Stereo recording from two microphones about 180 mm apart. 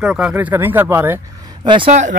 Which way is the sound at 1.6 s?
30° right (ahead or behind).